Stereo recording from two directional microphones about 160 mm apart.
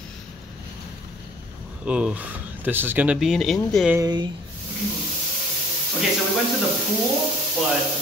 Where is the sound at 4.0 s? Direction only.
25° right (ahead or behind).